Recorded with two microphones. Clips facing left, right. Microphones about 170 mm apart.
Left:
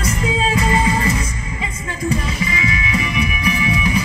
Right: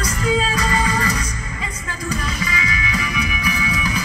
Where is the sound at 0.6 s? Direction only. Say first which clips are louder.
Left 3 dB; 25° left (ahead or behind).